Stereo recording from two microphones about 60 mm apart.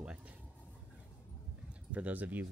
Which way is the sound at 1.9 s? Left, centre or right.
Right.